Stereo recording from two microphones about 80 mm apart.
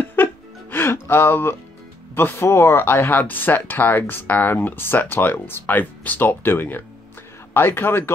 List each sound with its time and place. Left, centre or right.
0.0 s music: left
2.1 s speech: left